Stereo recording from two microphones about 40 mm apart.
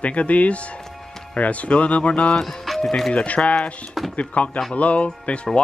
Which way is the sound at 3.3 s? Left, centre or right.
Left.